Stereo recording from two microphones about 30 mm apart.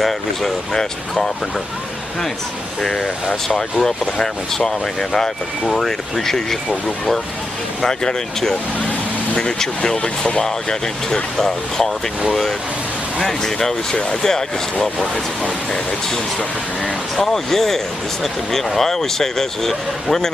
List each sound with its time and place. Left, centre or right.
0.7 s speech: centre
2.8 s speech: centre
10.0 s speech: left
10.4 s speech: centre
13.4 s speech: centre
17.2 s speech: centre